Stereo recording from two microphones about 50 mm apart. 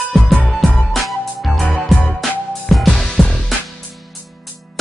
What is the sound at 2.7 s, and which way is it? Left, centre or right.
Music, centre.